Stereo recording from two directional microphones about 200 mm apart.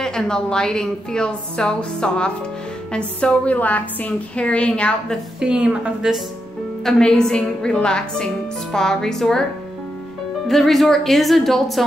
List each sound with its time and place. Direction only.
0.0 s a woman's voice: 5° left (ahead or behind)
10.5 s a woman's voice: centre (ahead or behind)